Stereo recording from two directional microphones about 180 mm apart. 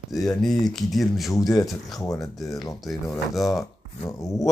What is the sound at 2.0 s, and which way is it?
Speech, 20° left (ahead or behind).